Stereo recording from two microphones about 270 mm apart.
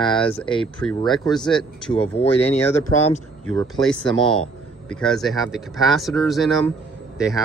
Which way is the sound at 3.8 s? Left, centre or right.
Centre.